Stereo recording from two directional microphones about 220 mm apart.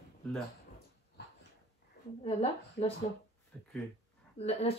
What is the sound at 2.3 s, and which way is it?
Speech, 25° left (ahead or behind).